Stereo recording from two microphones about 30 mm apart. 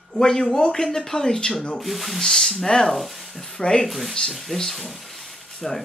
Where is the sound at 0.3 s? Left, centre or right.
Centre.